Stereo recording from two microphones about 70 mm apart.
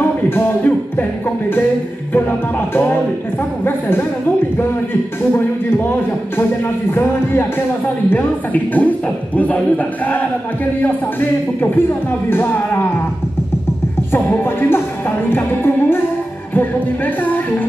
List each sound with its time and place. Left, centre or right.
0.0 s a man's voice: left
5.3 s a man's voice: left
8.7 s music: left
12.3 s a man's voice: left
14.1 s music: left